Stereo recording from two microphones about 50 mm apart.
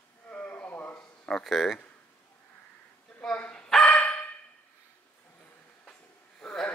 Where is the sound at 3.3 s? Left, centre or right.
Left.